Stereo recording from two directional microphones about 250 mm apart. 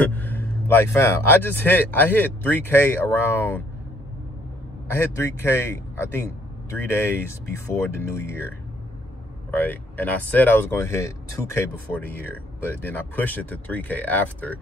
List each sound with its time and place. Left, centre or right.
0.0 s speech: centre
4.8 s speech: centre